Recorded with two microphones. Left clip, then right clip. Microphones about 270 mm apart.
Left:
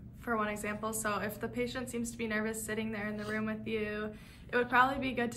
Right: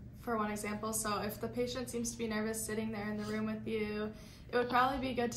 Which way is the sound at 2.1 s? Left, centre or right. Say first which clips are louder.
Left 4 dB; centre.